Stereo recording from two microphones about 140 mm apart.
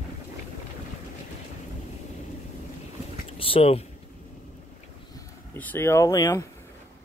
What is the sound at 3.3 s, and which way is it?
Speech, 40° left (ahead or behind).